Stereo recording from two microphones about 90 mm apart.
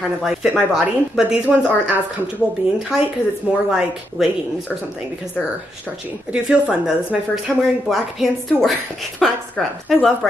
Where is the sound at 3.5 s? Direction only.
15° right (ahead or behind).